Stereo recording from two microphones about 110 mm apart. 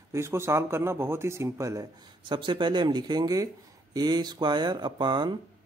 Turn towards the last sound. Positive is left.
turn(degrees=-45)  # may be behind; listen again after turning